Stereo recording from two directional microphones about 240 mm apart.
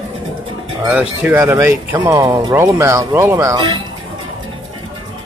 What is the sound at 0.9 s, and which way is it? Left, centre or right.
Speech, centre.